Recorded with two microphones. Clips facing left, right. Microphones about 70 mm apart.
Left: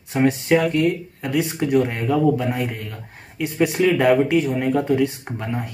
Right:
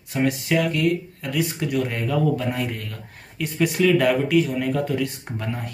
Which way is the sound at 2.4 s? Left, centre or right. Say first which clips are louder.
Left 2 dB; centre.